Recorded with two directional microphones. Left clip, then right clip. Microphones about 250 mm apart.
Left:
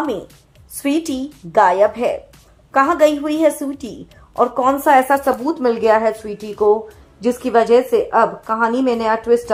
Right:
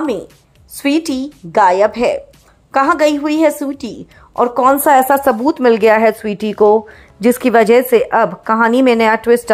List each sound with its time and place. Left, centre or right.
0.7 s a woman's voice: right
4.8 s speech: right